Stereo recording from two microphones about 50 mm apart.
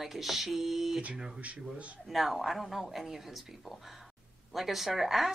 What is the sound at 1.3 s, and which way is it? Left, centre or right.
Speech, right.